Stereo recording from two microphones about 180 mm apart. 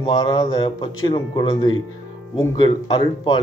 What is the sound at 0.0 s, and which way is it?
Speech, 25° left (ahead or behind).